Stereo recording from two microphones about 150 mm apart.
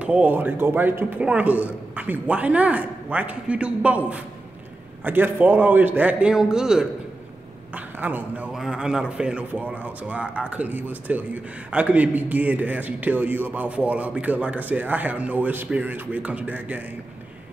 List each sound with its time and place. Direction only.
0.0 s speech: 10° right (ahead or behind)